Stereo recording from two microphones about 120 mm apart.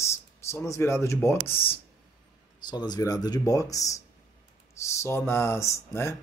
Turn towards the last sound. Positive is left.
turn(degrees=25)  # may be behind; listen again after turning